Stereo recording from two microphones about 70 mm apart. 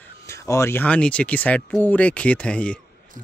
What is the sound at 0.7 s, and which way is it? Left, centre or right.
Speech, centre.